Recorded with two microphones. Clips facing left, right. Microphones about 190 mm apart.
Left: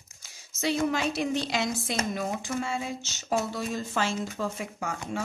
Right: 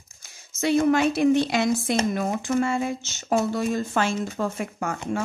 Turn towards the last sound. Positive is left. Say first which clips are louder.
# right 5 dB
turn(degrees=-55)  # may be behind; listen again after turning